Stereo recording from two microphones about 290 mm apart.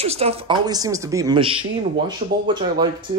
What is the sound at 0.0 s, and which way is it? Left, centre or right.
Speech, right.